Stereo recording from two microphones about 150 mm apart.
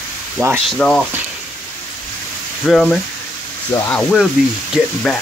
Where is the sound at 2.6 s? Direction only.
5° left (ahead or behind).